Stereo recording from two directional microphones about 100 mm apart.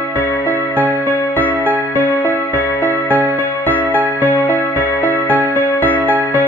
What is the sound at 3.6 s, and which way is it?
Music, 15° left (ahead or behind).